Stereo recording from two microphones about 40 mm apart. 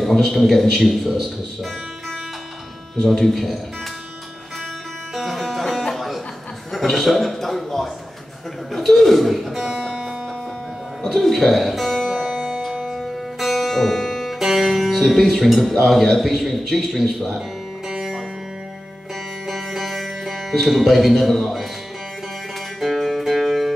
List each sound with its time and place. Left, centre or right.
0.3 s a man's voice: centre
3.1 s a man's voice: centre
5.1 s music: centre
6.7 s a man's voice: centre
9.8 s music: centre
11.1 s a man's voice: centre
12.0 s music: centre
13.4 s music: centre
15.2 s a man's voice: centre
17.8 s music: centre
19.4 s music: centre
22.8 s music: centre